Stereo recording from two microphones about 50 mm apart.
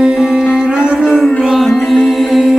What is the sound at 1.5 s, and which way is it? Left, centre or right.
Music, centre.